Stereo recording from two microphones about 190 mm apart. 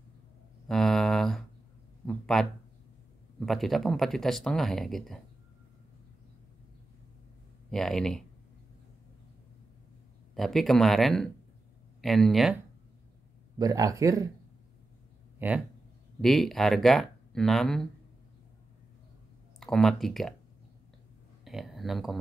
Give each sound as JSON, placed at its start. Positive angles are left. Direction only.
{"t": 0.7, "sound": "a sound", "side_deg": 0}
{"t": 3.3, "sound": "speech", "side_deg": 0}
{"t": 7.7, "sound": "speech", "side_deg": 0}
{"t": 10.3, "sound": "speech", "side_deg": 0}
{"t": 13.6, "sound": "speech", "side_deg": -20}
{"t": 15.3, "sound": "a sound", "side_deg": -10}
{"t": 16.2, "sound": "speech", "side_deg": 0}
{"t": 19.6, "sound": "speech", "side_deg": 0}
{"t": 21.5, "sound": "speech", "side_deg": 0}